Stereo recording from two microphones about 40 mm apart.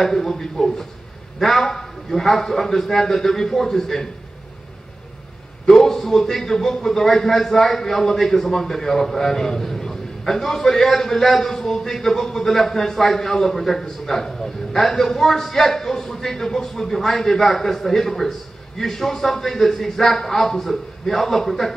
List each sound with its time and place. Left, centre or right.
0.0 s a man's voice: centre
5.7 s a man's voice: centre